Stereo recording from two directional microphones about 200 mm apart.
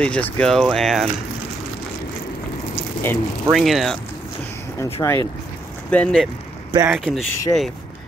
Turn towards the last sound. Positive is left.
turn(degrees=0)  # may be behind; listen again after turning